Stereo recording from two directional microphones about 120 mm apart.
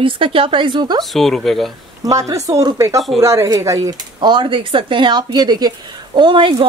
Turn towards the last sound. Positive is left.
turn(degrees=-45)  # may be behind; listen again after turning